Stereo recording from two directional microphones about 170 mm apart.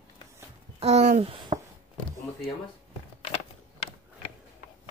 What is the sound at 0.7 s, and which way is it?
Babbling, 40° right (ahead or behind).